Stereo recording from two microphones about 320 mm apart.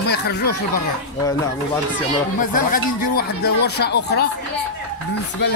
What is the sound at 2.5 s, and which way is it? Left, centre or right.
Speech, left.